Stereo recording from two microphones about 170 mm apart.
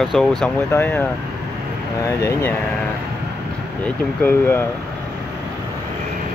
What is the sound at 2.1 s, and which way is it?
Speech, 20° left (ahead or behind).